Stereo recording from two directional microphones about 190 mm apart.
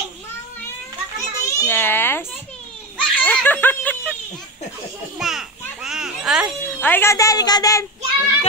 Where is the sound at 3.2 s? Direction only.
10° left (ahead or behind).